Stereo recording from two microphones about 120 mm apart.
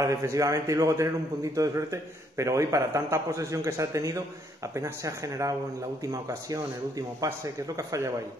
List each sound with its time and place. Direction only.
0.0 s a man's voice: 25° right (ahead or behind)